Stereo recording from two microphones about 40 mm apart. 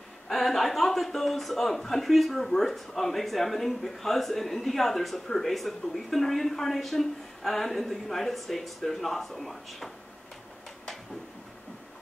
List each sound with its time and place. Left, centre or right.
0.3 s a man's voice: centre